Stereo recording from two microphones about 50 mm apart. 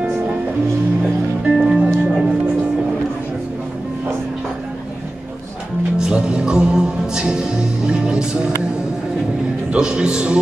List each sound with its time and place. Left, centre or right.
1.4 s music: centre
1.9 s music: centre
5.9 s music: centre
9.7 s a man's voice: centre